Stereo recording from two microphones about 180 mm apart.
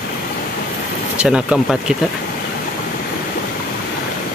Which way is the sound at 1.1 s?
5° right (ahead or behind).